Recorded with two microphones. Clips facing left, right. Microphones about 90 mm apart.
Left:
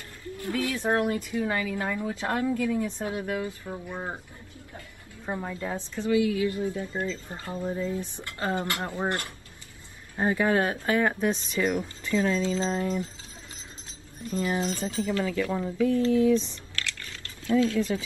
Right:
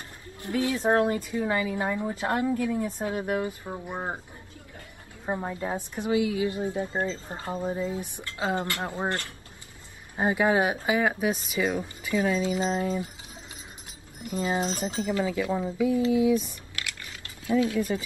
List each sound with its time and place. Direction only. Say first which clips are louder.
0.4 s speech: right 2 dB; 25° right (ahead or behind)
1.4 s a woman's voice: right 3 dB; 15° right (ahead or behind)
3.2 s speech: right 3 dB; 30° right (ahead or behind)
3.4 s speech: right 1 dB; 20° right (ahead or behind)
5.2 s a woman's voice: right 2 dB; 20° right (ahead or behind)
10.1 s a woman's voice: right 1 dB; 15° right (ahead or behind)
14.2 s a woman's voice: even; 20° right (ahead or behind)